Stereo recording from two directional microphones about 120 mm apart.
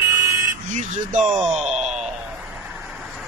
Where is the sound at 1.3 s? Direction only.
5° right (ahead or behind).